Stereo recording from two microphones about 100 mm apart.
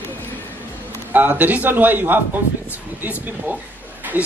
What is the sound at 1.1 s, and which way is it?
A man's voice, 15° right (ahead or behind).